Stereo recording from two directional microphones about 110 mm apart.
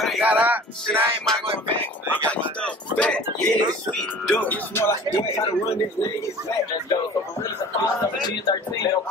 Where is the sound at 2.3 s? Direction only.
10° left (ahead or behind).